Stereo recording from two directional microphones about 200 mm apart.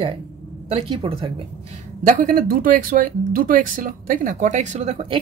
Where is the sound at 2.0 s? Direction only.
40° right (ahead or behind).